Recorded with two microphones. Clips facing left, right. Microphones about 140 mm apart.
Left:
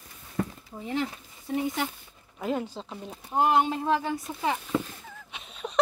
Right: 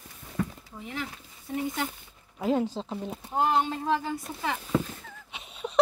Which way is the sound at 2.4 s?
20° right (ahead or behind).